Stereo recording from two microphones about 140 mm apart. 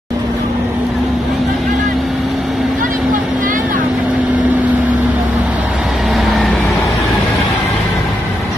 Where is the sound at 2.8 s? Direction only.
75° right (ahead or behind).